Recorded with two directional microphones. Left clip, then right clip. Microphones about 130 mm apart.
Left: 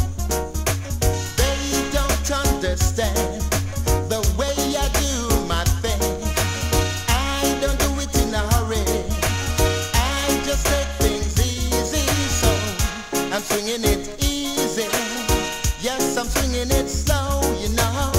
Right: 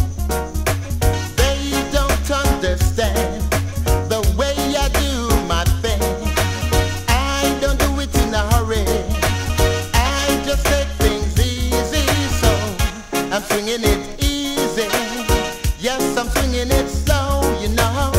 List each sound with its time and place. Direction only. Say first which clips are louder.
0.3 s music: right 3 dB; 25° left (ahead or behind)